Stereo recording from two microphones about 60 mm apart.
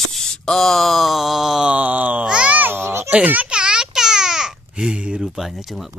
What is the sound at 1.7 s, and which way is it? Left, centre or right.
Groan, right.